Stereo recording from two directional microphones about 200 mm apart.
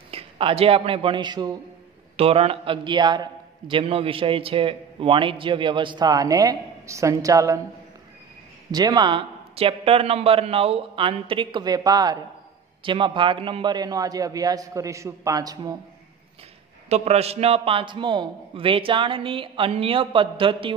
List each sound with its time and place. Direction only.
0.1 s a man's voice: 30° right (ahead or behind)
8.7 s a man's voice: 20° right (ahead or behind)
16.9 s a man's voice: 30° right (ahead or behind)